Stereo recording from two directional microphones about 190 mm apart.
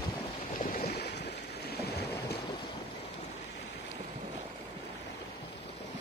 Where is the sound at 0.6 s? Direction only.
50° left (ahead or behind).